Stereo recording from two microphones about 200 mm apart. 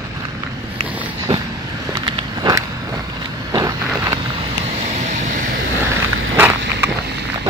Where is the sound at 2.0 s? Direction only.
20° right (ahead or behind).